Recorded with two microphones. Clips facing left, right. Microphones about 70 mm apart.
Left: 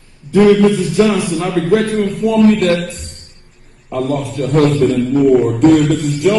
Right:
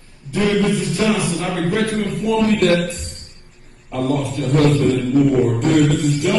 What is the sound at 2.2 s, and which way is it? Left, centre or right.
Speech, left.